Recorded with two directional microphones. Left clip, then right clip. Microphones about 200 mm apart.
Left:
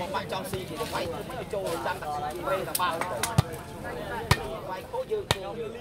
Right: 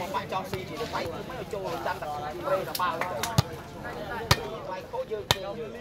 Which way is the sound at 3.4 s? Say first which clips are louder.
Even; 50° right (ahead or behind).